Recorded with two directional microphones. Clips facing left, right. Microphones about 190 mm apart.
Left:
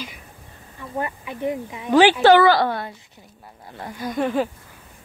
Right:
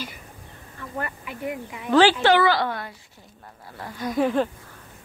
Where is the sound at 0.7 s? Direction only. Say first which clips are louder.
Left 4 dB; 20° left (ahead or behind).